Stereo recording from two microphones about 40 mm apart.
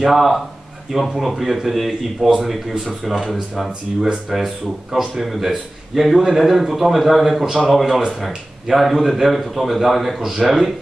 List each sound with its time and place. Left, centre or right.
0.0 s a man's voice: centre
7.4 s speech: centre
7.7 s a man's voice: centre